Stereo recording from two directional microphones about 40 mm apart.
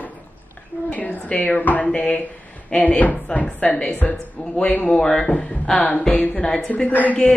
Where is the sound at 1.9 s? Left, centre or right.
Left.